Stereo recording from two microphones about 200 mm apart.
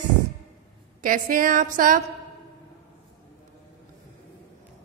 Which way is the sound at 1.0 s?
45° right (ahead or behind).